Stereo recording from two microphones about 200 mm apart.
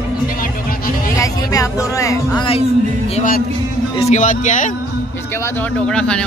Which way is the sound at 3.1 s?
40° left (ahead or behind).